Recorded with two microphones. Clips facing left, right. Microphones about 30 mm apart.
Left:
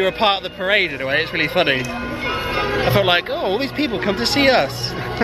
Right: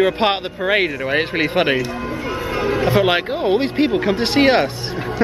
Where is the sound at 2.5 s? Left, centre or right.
Left.